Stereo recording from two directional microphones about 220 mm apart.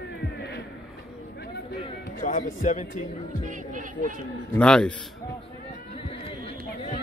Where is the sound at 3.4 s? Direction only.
35° right (ahead or behind).